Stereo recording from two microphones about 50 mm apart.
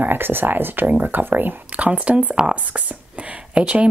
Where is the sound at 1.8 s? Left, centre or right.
Right.